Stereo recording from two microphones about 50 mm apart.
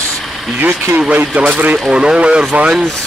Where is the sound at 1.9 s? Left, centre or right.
Centre.